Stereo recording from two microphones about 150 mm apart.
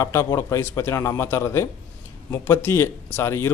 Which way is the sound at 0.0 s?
20° left (ahead or behind).